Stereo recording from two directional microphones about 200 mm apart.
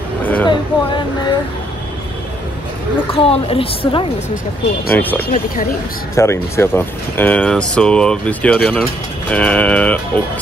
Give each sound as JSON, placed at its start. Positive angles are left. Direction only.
{"t": 0.2, "sound": "hubbub", "side_deg": 10}
{"t": 3.1, "sound": "a woman's voice", "side_deg": 30}
{"t": 4.9, "sound": "speech", "side_deg": 10}
{"t": 5.3, "sound": "speech", "side_deg": 45}
{"t": 6.1, "sound": "speech", "side_deg": 15}